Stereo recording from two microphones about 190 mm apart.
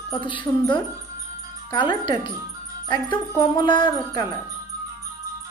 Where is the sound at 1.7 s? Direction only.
25° left (ahead or behind).